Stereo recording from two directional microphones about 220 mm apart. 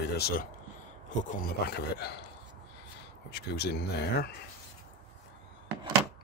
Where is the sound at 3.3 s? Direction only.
45° left (ahead or behind).